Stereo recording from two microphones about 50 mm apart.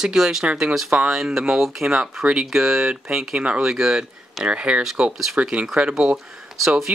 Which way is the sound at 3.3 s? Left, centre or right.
Right.